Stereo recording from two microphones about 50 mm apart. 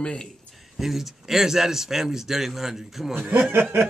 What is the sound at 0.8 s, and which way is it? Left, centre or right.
Speech, centre.